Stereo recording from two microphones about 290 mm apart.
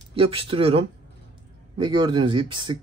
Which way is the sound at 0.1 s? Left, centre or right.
Centre.